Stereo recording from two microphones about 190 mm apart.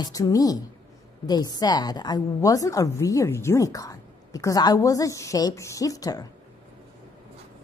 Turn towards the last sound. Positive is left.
turn(degrees=20)  # may be behind; listen again after turning